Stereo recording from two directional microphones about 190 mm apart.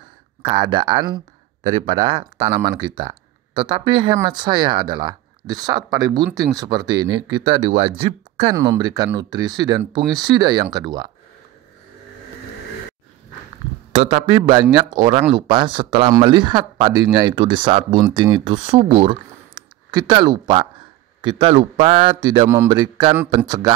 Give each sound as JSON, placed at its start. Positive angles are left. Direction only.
{"t": 0.4, "sound": "speech", "side_deg": -25}
{"t": 13.9, "sound": "speech", "side_deg": -30}